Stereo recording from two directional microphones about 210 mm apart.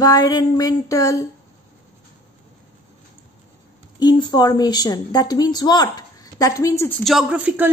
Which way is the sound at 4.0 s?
20° left (ahead or behind).